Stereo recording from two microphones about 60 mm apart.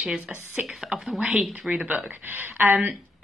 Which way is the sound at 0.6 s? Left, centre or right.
Centre.